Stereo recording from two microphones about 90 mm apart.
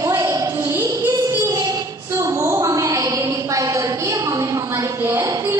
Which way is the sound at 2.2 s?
35° right (ahead or behind).